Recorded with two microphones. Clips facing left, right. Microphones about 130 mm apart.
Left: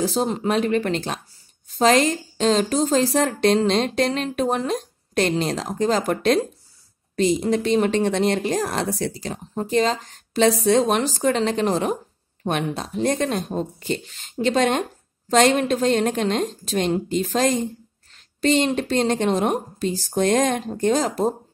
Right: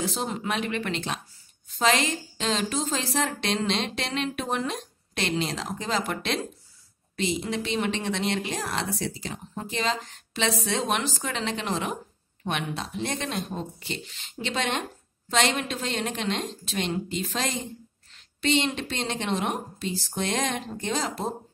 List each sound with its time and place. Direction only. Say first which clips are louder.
0.0 s a woman's voice: left 8 dB; 35° left (ahead or behind)